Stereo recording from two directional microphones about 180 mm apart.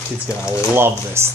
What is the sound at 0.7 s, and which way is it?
Speech, 15° right (ahead or behind).